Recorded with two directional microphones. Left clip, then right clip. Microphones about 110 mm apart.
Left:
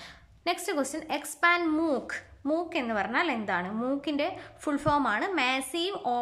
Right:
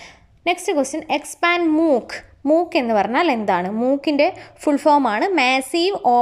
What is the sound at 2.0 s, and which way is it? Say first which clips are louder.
Speech: right 12 dB; 45° right (ahead or behind).